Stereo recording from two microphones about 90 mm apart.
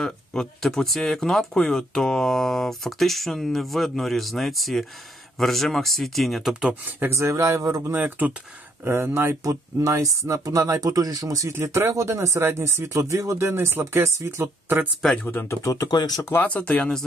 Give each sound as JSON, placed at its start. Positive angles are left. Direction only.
{"t": 0.0, "sound": "speech", "side_deg": 5}
{"t": 6.6, "sound": "speech", "side_deg": -25}
{"t": 7.9, "sound": "speech", "side_deg": -20}
{"t": 15.6, "sound": "speech", "side_deg": 35}
{"t": 15.9, "sound": "speech", "side_deg": 45}
{"t": 16.3, "sound": "speech", "side_deg": 20}